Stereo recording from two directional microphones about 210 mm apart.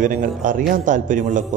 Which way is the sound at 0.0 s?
40° right (ahead or behind).